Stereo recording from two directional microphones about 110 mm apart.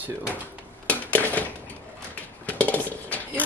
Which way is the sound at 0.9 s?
15° left (ahead or behind).